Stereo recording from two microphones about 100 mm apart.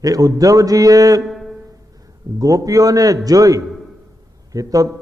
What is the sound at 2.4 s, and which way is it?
A man's voice, 35° right (ahead or behind).